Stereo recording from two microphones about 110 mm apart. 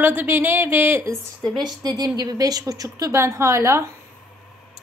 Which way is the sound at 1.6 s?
40° right (ahead or behind).